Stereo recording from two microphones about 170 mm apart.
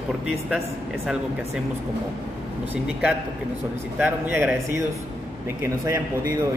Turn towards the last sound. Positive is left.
turn(degrees=-15)  # may be behind; listen again after turning